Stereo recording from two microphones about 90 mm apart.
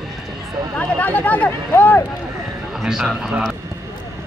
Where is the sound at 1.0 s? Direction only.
20° left (ahead or behind).